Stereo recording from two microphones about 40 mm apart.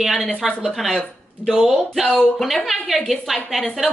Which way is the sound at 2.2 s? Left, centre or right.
Centre.